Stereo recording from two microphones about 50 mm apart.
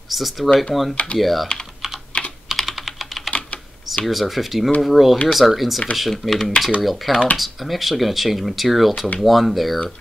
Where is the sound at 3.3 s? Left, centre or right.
Left.